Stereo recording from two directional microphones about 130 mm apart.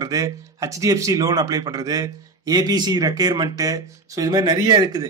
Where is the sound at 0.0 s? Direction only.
25° right (ahead or behind).